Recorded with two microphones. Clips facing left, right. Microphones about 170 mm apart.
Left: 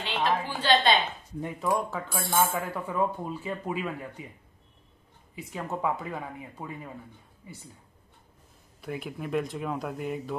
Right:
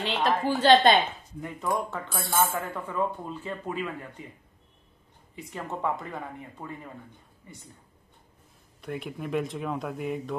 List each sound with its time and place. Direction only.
0.0 s a woman's voice: 45° right (ahead or behind)
1.6 s speech: centre (ahead or behind)
5.3 s speech: 5° left (ahead or behind)
8.8 s speech: centre (ahead or behind)